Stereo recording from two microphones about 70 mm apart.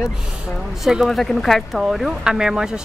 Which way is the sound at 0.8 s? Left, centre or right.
Centre.